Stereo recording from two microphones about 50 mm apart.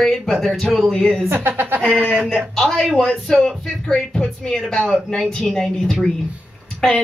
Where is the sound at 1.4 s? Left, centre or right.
Right.